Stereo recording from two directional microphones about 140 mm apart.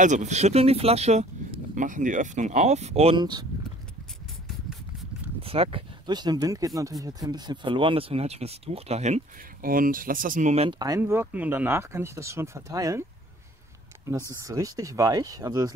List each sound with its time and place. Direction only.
0.0 s speech: 60° right (ahead or behind)
3.2 s speech: 30° right (ahead or behind)
5.4 s speech: 40° right (ahead or behind)
9.6 s speech: 85° right
10.7 s speech: 25° right (ahead or behind)
11.0 s speech: 15° right (ahead or behind)
13.9 s a sound: 20° right (ahead or behind)
14.3 s speech: 25° right (ahead or behind)